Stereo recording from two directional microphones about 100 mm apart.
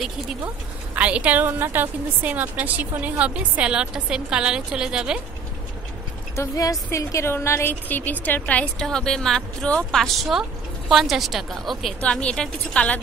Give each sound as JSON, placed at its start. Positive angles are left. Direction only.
{"t": 0.9, "sound": "a woman's voice", "side_deg": -15}
{"t": 6.3, "sound": "a woman's voice", "side_deg": 30}
{"t": 12.0, "sound": "a woman's voice", "side_deg": 10}